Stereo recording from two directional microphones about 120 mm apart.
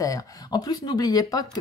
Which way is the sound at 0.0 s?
30° left (ahead or behind).